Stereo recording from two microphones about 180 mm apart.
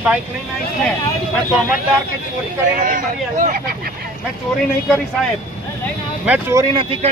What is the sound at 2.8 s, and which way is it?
Speech, 50° right (ahead or behind).